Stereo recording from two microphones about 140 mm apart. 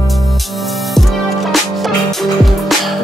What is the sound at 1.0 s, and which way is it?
Music, centre (ahead or behind).